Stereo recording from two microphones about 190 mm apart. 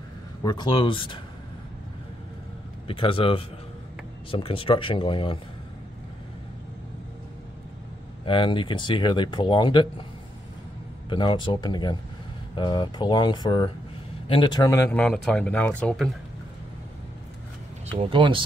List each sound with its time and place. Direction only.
0.4 s speech: 20° left (ahead or behind)
2.9 s speech: 25° left (ahead or behind)
8.3 s speech: 25° left (ahead or behind)
11.1 s speech: 25° left (ahead or behind)
14.9 s speech: 5° left (ahead or behind)
17.9 s speech: 30° right (ahead or behind)